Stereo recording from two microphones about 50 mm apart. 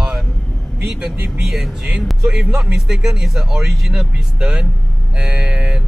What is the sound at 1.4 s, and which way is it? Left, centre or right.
Speech, centre.